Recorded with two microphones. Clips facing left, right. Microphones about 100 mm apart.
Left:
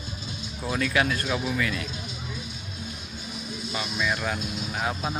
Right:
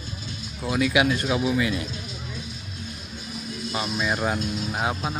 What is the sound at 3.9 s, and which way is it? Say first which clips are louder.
Speech: right 2 dB; 35° right (ahead or behind).